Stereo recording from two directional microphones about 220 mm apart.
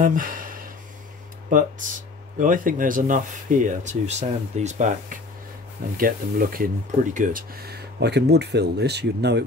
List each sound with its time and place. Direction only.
0.0 s speech: 35° right (ahead or behind)